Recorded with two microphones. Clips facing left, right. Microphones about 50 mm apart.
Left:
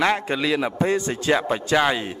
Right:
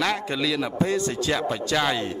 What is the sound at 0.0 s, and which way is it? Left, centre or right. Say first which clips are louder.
A man's voice: left 4 dB; left.